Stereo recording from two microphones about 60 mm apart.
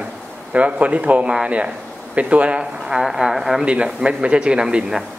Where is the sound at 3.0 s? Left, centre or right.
Centre.